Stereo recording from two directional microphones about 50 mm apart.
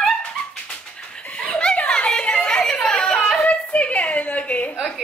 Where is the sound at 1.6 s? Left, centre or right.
Left.